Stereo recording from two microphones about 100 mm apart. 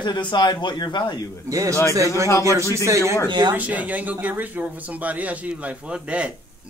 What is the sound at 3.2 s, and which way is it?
Speech, 45° right (ahead or behind).